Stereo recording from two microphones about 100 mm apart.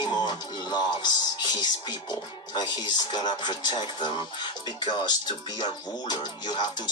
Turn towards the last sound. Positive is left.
turn(degrees=45)  # may be behind; listen again after turning